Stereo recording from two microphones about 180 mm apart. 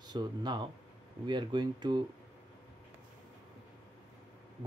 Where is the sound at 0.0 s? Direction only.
25° right (ahead or behind).